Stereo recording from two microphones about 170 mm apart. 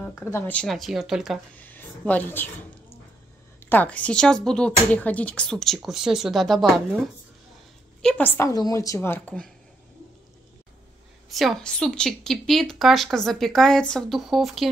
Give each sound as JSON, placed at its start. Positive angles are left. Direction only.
{"t": 0.0, "sound": "a woman's voice", "side_deg": 15}
{"t": 1.6, "sound": "speech", "side_deg": 10}
{"t": 3.6, "sound": "a woman's voice", "side_deg": 10}
{"t": 8.0, "sound": "a woman's voice", "side_deg": 5}
{"t": 8.4, "sound": "a woman's voice", "side_deg": 20}
{"t": 11.2, "sound": "a woman's voice", "side_deg": 0}